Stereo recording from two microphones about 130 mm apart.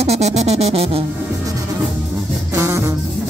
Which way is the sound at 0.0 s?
55° right (ahead or behind).